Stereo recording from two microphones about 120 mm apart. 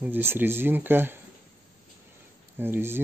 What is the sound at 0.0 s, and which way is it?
Speech, 15° right (ahead or behind).